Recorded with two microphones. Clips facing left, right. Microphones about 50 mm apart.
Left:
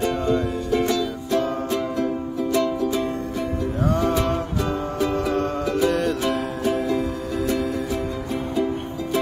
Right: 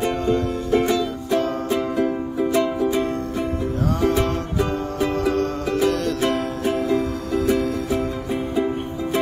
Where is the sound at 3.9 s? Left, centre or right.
Centre.